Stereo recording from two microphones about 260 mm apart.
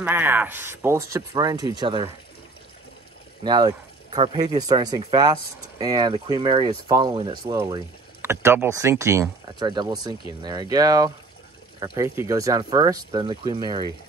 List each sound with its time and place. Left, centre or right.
0.0 s speech: centre
3.4 s speech: centre